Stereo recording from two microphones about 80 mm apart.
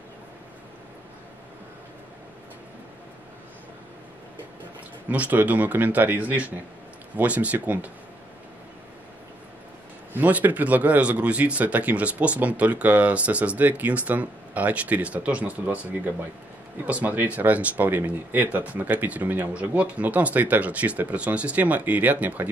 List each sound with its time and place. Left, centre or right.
5.1 s speech: centre
10.1 s speech: right